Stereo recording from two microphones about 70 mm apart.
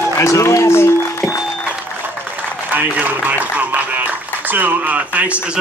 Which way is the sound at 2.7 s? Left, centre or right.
Right.